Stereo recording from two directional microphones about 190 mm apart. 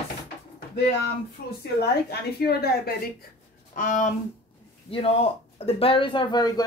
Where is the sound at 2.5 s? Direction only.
55° left (ahead or behind).